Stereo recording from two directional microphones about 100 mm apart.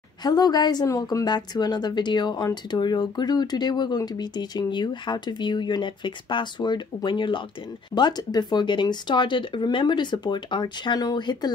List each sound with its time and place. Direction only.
0.2 s a woman's voice: 40° left (ahead or behind)